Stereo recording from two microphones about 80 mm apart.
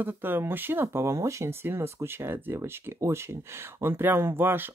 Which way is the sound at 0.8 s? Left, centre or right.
Right.